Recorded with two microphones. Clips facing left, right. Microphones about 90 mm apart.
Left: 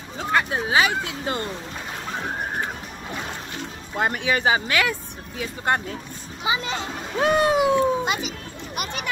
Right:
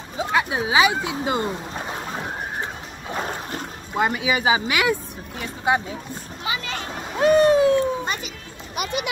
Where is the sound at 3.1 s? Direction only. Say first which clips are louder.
Right 6 dB; 40° right (ahead or behind).